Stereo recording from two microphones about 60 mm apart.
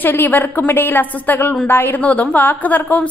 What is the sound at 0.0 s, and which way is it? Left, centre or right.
A woman's voice, left.